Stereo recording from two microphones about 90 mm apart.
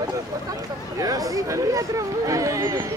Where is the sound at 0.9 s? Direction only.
40° right (ahead or behind).